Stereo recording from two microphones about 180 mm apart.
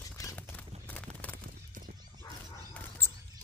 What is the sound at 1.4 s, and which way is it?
Clip-clop, 50° right (ahead or behind).